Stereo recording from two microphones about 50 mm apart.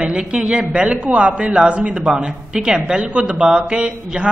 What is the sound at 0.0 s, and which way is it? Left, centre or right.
A man's voice, centre.